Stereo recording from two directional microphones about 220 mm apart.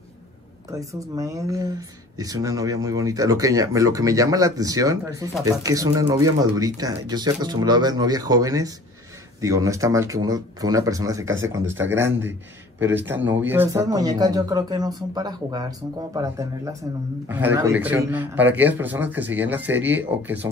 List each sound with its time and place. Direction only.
0.7 s speech: 15° right (ahead or behind)